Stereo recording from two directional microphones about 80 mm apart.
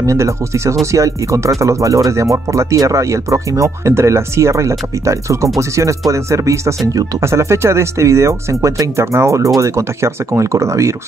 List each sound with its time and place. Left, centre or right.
0.0 s speech: right